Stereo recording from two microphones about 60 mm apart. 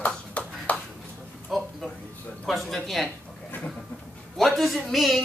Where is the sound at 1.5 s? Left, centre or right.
Centre.